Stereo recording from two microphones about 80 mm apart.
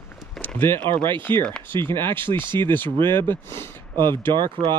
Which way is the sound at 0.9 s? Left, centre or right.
Right.